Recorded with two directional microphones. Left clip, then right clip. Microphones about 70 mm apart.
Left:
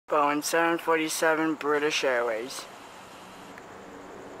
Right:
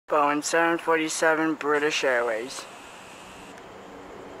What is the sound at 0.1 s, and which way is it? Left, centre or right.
Speech, centre.